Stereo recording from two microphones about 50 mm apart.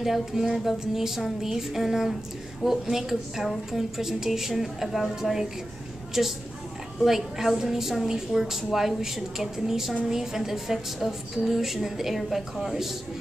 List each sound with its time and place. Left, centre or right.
0.0 s a woman's voice: centre